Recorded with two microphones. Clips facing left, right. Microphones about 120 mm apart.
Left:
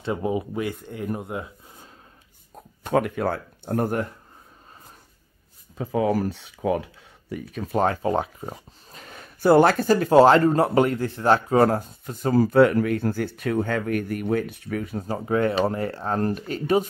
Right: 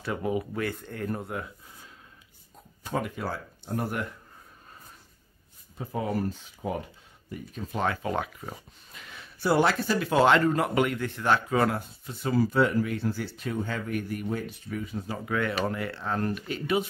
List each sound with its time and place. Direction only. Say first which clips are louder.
0.0 s speech: left 4 dB; 25° left (ahead or behind)
2.8 s speech: left 9 dB; 60° left (ahead or behind)
5.8 s speech: left 7 dB; 90° left; by 7.7 s 75° left (ahead or behind)
7.7 s speech: left 7 dB; 40° left (ahead or behind); by 15.0 s 60° left (ahead or behind)
15.0 s speech: left 8 dB; 35° left (ahead or behind)